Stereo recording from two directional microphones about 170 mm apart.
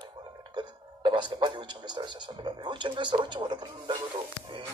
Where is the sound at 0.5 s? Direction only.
30° right (ahead or behind).